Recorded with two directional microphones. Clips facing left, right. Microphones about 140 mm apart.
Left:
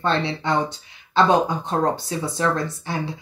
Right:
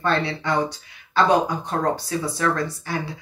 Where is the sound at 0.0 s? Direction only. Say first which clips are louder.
Even; 25° left (ahead or behind).